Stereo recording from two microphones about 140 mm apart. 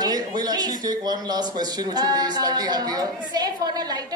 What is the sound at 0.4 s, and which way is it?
A woman's voice, 30° right (ahead or behind).